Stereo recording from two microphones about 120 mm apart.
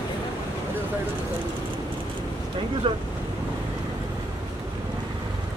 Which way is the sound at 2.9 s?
45° right (ahead or behind).